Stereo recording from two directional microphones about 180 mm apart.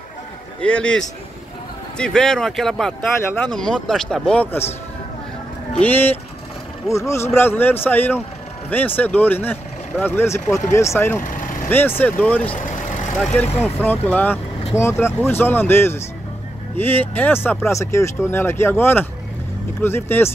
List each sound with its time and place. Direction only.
0.6 s speech: 5° left (ahead or behind)
5.8 s speech: 10° left (ahead or behind)
11.2 s vehicle: 50° left (ahead or behind)
12.0 s speech: 10° left (ahead or behind)
13.6 s speech: 10° left (ahead or behind)